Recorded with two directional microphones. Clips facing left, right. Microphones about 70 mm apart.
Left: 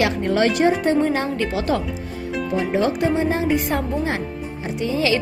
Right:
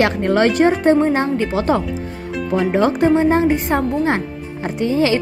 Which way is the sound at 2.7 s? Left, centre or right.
Right.